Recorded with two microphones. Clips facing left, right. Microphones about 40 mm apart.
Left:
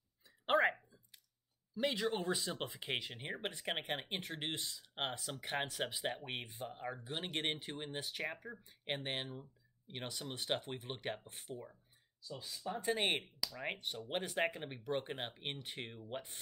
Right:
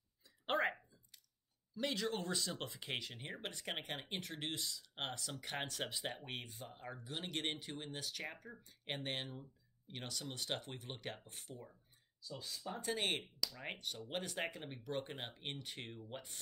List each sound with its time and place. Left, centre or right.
0.5 s a sound: centre
1.8 s speech: centre
5.6 s speech: centre
11.7 s speech: centre
12.7 s speech: left